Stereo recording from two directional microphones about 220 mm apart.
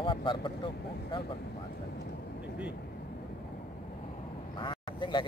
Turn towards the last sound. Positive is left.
turn(degrees=20)  # may be behind; listen again after turning